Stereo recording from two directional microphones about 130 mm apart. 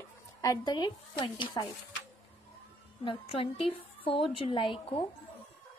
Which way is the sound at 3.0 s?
40° left (ahead or behind).